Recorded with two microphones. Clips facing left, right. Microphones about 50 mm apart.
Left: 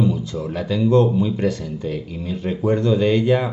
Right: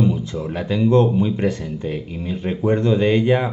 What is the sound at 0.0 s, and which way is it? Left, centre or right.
Speech, right.